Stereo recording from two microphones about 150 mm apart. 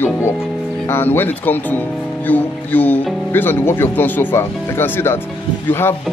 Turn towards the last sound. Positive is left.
turn(degrees=15)  # may be behind; listen again after turning